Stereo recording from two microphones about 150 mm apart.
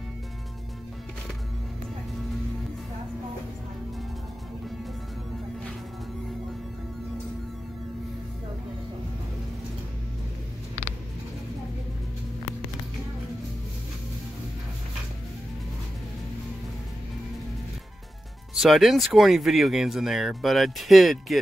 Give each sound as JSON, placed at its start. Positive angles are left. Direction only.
{"t": 18.5, "sound": "speech", "side_deg": -5}